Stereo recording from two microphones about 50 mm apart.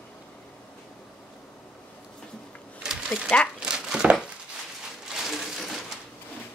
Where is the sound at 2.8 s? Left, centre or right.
Centre.